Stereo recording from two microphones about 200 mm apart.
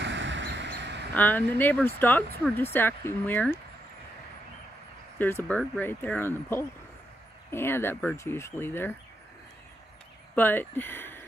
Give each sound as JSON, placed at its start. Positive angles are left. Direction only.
{"t": 0.0, "sound": "duck", "side_deg": -65}
{"t": 1.1, "sound": "speech", "side_deg": 10}
{"t": 5.2, "sound": "speech", "side_deg": 10}
{"t": 10.3, "sound": "speech", "side_deg": 10}